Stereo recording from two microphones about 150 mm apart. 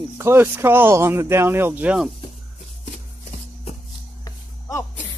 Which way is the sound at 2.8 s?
45° left (ahead or behind).